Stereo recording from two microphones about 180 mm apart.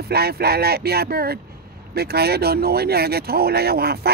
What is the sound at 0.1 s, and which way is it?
Speech, 60° right (ahead or behind).